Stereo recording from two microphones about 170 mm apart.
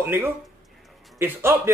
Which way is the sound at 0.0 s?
15° right (ahead or behind).